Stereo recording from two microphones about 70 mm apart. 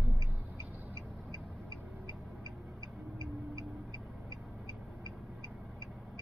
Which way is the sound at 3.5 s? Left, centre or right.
Right.